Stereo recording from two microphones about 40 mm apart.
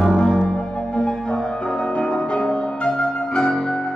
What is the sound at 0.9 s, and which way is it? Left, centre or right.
Music, left.